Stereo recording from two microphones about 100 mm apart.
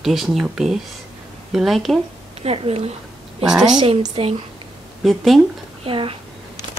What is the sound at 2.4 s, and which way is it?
Speech, 80° right.